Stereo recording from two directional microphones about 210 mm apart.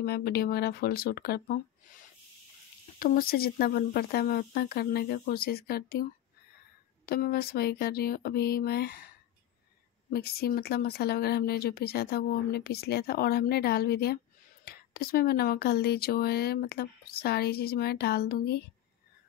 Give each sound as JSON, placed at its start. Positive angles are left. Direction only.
{"t": 0.0, "sound": "speech", "side_deg": 50}
{"t": 7.1, "sound": "speech", "side_deg": 45}
{"t": 10.1, "sound": "speech", "side_deg": 45}